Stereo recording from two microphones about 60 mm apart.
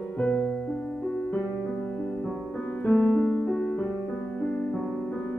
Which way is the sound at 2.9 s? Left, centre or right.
Centre.